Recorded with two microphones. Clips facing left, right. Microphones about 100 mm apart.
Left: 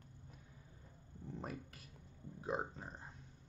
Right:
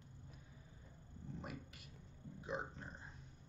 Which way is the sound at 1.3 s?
35° left (ahead or behind).